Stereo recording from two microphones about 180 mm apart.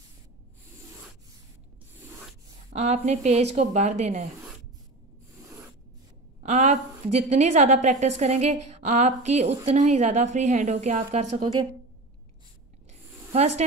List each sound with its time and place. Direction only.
2.7 s a woman's voice: 40° right (ahead or behind)
6.4 s a woman's voice: 40° right (ahead or behind)
13.3 s a woman's voice: 35° right (ahead or behind)